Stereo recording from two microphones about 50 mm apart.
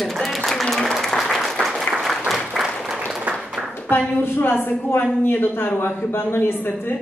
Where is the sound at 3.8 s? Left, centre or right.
Left.